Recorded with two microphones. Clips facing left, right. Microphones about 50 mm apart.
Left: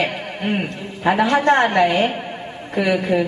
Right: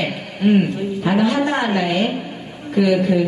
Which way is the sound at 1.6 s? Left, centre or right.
Centre.